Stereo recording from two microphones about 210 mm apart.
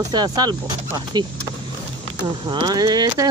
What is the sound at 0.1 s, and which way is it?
Speech, 20° right (ahead or behind).